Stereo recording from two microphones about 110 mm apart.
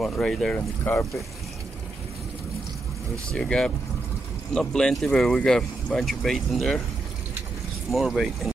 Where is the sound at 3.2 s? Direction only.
10° left (ahead or behind).